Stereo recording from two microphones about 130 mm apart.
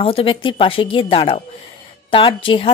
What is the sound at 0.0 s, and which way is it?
Speech, 45° left (ahead or behind).